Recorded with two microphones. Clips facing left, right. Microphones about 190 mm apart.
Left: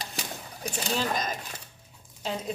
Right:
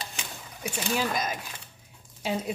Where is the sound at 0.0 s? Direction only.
40° left (ahead or behind).